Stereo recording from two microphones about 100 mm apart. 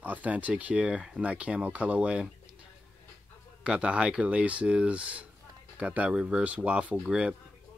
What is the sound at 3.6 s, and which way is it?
Speech, 10° right (ahead or behind).